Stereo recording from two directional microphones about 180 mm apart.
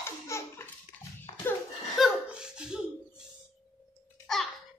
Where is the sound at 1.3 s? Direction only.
30° left (ahead or behind).